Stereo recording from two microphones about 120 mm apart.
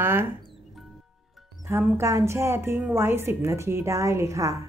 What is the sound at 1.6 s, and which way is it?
Speech, 20° right (ahead or behind).